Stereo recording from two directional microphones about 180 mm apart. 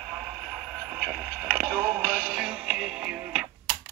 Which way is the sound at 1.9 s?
Centre (ahead or behind).